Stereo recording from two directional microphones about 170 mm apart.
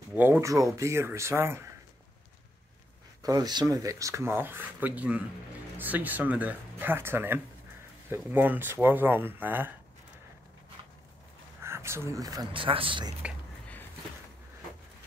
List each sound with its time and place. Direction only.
0.1 s speech: 10° right (ahead or behind)
3.2 s speech: 20° right (ahead or behind)
11.6 s speech: 15° right (ahead or behind); by 13.1 s 30° right (ahead or behind)